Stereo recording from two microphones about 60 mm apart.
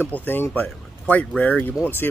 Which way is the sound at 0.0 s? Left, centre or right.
Left.